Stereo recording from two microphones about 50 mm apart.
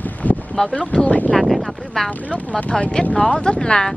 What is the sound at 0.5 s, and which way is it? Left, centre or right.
Speech, left.